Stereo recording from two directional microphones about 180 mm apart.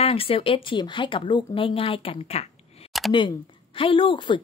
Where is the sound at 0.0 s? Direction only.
30° left (ahead or behind).